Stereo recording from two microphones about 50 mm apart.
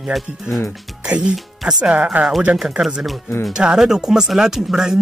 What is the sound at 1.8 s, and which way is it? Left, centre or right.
Speech, right.